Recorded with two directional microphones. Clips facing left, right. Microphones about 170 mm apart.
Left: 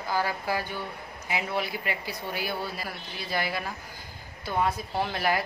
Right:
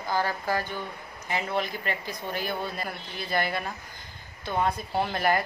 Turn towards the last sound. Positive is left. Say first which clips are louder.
# right 2 dB
turn(degrees=0)  # may be behind; listen again after turning